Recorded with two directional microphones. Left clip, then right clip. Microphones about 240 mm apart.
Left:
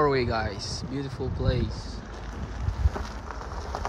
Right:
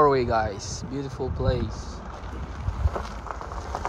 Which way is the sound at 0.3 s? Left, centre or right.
Centre.